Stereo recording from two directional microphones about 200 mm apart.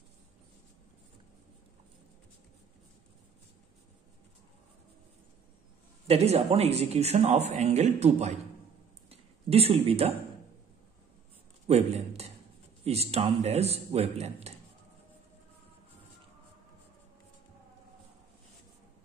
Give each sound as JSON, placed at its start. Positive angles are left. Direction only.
{"t": 6.0, "sound": "a man's voice", "side_deg": -30}
{"t": 11.6, "sound": "a man's voice", "side_deg": -30}